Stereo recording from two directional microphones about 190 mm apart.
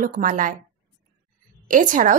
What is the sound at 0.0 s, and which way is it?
Speech, 45° right (ahead or behind).